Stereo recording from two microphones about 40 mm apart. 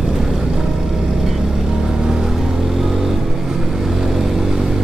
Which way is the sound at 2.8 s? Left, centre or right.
Centre.